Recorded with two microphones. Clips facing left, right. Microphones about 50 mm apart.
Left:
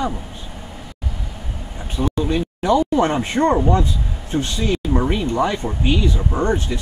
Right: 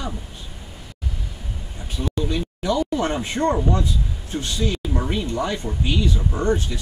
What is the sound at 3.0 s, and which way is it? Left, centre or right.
Speech, left.